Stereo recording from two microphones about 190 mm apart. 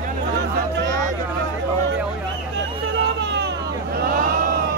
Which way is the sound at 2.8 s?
65° right (ahead or behind).